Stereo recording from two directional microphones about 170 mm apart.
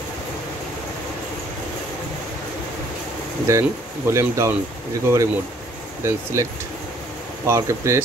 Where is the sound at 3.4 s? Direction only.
15° right (ahead or behind).